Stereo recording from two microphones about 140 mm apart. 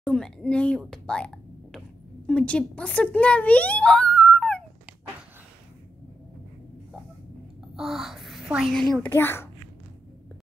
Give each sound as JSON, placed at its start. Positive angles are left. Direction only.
{"t": 0.0, "sound": "speech", "side_deg": 5}
{"t": 7.7, "sound": "a child's voice", "side_deg": 0}
{"t": 9.1, "sound": "a child's voice", "side_deg": 15}